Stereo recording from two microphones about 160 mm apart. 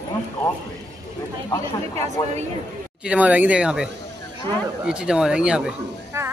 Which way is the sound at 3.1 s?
10° right (ahead or behind).